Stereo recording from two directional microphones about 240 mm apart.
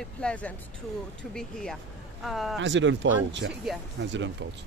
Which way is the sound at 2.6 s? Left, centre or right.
Right.